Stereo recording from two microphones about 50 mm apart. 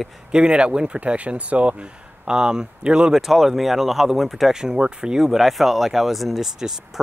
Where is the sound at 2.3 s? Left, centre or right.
Centre.